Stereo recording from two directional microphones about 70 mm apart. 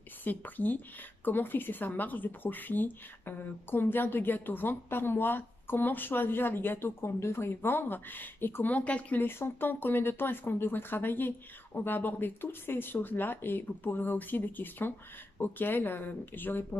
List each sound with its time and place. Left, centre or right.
0.2 s speech: left
9.2 s speech: left